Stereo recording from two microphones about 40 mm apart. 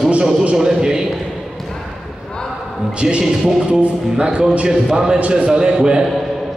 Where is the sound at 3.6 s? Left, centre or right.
Right.